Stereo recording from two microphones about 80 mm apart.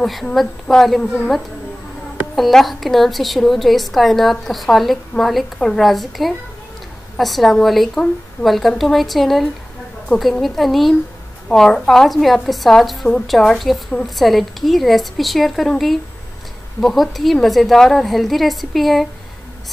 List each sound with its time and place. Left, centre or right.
0.0 s a woman's voice: centre
2.3 s a woman's voice: centre